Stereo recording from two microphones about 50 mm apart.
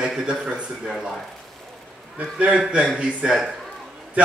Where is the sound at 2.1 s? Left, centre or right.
Right.